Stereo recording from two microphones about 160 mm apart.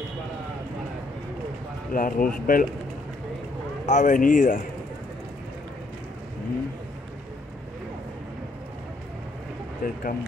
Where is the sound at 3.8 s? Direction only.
50° left (ahead or behind).